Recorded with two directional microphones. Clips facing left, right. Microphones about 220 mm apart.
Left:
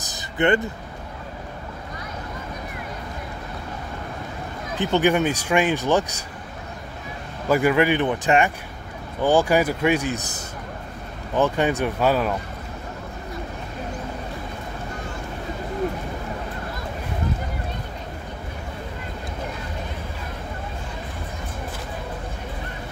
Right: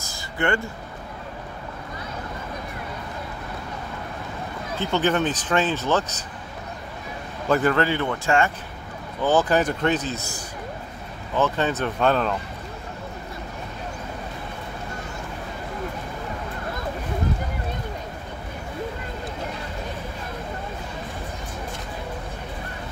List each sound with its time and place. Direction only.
0.0 s a sound: 20° left (ahead or behind)
4.7 s speech: 15° left (ahead or behind)
7.4 s speech: 10° left (ahead or behind)